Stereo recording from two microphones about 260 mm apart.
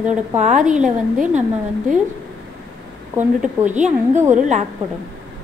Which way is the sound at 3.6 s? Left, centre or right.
Right.